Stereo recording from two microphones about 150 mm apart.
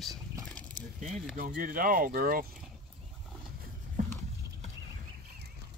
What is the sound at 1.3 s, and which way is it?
Speech, 65° right (ahead or behind).